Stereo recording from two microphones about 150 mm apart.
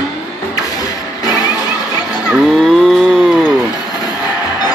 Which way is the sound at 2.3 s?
Centre (ahead or behind).